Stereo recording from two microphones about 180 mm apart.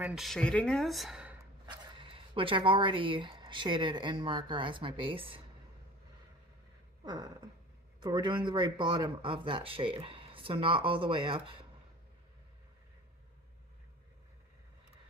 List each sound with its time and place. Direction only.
0.0 s speech: centre (ahead or behind)
1.7 s speech: 25° right (ahead or behind)
7.1 s speech: 25° right (ahead or behind)